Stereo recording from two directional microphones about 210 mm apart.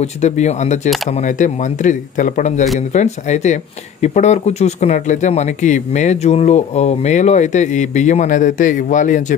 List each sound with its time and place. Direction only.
0.0 s speech: 35° left (ahead or behind)